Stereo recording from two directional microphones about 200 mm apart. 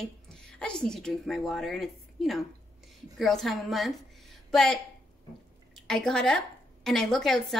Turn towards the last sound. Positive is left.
turn(degrees=0)  # may be behind; listen again after turning